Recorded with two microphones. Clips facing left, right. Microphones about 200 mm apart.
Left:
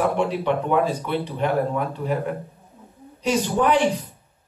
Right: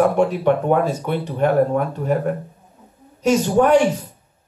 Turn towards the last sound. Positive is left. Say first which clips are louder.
# right 5 dB
turn(degrees=-45)  # may be behind; listen again after turning